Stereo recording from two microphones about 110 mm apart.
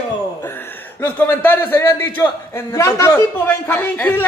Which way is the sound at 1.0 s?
20° left (ahead or behind).